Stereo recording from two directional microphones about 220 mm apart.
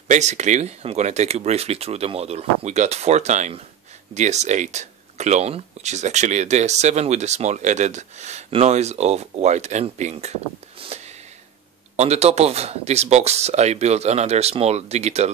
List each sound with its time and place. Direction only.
0.1 s speech: 30° right (ahead or behind)
10.8 s a sound: 30° right (ahead or behind)
12.0 s speech: 30° right (ahead or behind)